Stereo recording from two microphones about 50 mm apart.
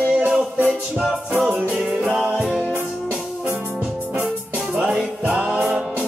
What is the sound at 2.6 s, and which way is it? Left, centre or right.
Music, right.